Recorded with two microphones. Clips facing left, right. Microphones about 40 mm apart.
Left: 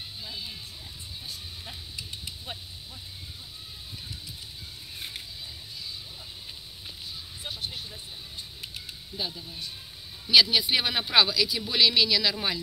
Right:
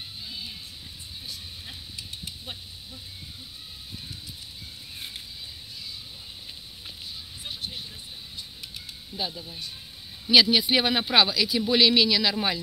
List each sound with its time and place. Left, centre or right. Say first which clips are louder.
9.1 s speech: right 2 dB; centre